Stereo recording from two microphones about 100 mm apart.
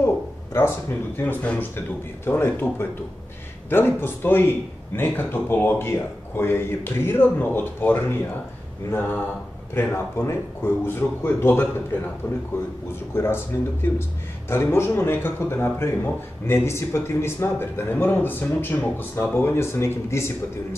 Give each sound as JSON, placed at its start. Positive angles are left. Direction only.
{"t": 0.0, "sound": "a man's voice", "side_deg": 25}
{"t": 9.8, "sound": "a man's voice", "side_deg": 25}
{"t": 13.1, "sound": "a man's voice", "side_deg": 25}
{"t": 14.5, "sound": "a man's voice", "side_deg": 25}